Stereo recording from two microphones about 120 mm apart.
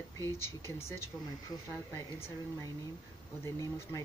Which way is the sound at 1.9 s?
20° left (ahead or behind).